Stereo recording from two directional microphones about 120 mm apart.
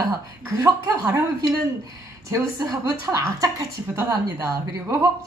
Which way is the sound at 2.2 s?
30° right (ahead or behind).